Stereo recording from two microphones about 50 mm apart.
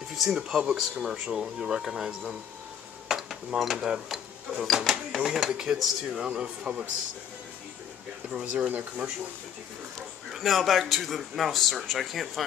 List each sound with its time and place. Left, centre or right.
0.1 s a sound: centre
0.5 s speech: centre
3.1 s dishes: centre
3.7 s speech: centre
4.1 s a sound: centre
5.2 s speech: centre
6.2 s speech: centre
8.3 s speech: centre
8.6 s speech: right
10.3 s a man's voice: centre